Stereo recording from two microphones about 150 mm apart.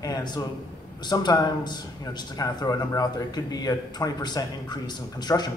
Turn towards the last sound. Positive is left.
turn(degrees=30)  # may be behind; listen again after turning